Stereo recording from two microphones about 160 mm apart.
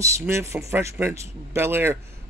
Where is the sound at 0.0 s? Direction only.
15° right (ahead or behind).